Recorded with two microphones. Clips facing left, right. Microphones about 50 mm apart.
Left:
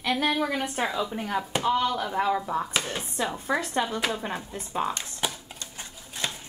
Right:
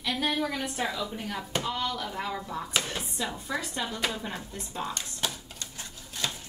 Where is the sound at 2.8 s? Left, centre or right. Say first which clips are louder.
Left 2 dB; centre.